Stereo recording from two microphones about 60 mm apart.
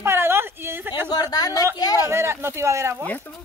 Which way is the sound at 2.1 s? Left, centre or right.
Right.